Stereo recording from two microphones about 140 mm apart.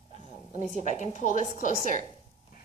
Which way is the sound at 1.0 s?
60° left (ahead or behind).